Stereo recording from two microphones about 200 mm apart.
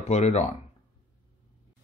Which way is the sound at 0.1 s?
35° left (ahead or behind).